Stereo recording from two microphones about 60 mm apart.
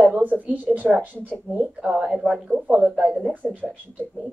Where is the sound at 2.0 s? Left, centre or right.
Centre.